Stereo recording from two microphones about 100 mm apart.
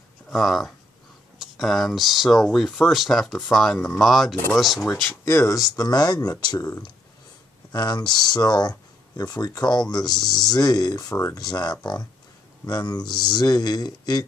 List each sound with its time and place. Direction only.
0.3 s speech: centre (ahead or behind)
5.1 s speech: 25° left (ahead or behind); by 6.7 s 45° left (ahead or behind)
7.7 s speech: 45° left (ahead or behind)
10.1 s speech: 5° left (ahead or behind)
10.4 s speech: 40° left (ahead or behind)